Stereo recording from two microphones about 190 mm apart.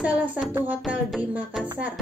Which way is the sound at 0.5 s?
10° right (ahead or behind).